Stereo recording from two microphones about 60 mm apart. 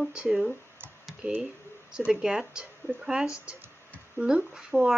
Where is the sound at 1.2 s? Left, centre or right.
Right.